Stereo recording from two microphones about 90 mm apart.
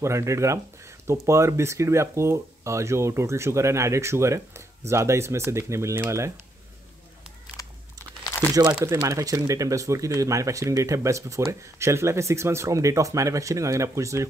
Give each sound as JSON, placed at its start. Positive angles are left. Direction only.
{"t": 0.0, "sound": "speech", "side_deg": -35}
{"t": 8.9, "sound": "speech", "side_deg": -35}